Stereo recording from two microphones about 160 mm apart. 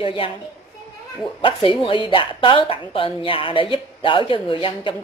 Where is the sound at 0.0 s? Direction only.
35° left (ahead or behind).